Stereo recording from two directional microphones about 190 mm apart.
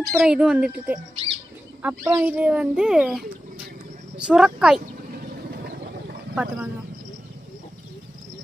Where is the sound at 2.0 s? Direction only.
10° right (ahead or behind).